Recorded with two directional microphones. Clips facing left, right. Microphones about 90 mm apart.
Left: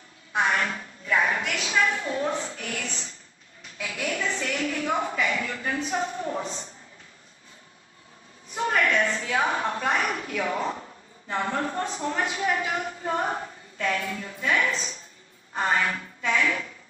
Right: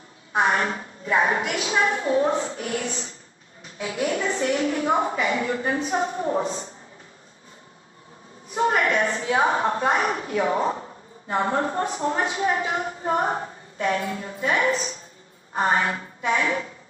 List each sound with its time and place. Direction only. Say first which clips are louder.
0.3 s a woman's voice: right 3 dB; 30° right (ahead or behind)
8.5 s a woman's voice: right 3 dB; 30° right (ahead or behind)